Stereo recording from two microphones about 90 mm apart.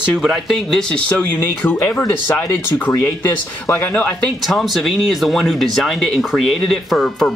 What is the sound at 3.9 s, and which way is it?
Speech, 15° left (ahead or behind).